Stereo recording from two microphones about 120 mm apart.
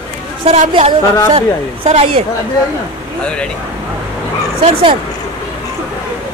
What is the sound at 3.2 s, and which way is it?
Speech, 10° left (ahead or behind).